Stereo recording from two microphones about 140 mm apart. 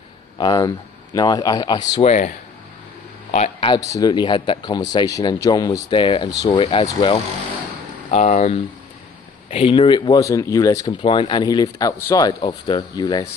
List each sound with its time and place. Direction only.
0.4 s a man's voice: 30° left (ahead or behind)
2.0 s a man's voice: 65° left (ahead or behind)
3.8 s a man's voice: 20° left (ahead or behind)
4.1 s speech: 35° left (ahead or behind)
8.1 s speech: 55° left (ahead or behind)
9.5 s speech: 40° left (ahead or behind)